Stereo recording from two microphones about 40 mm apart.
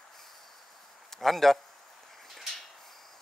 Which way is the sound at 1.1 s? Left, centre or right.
Centre.